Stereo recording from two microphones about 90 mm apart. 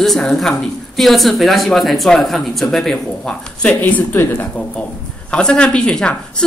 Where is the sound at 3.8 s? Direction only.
25° left (ahead or behind).